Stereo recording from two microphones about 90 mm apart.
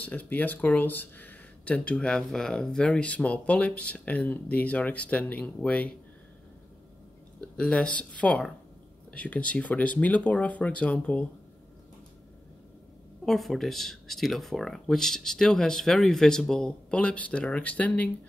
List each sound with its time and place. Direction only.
0.0 s speech: 15° left (ahead or behind)
7.3 s speech: 10° left (ahead or behind)
13.2 s speech: centre (ahead or behind)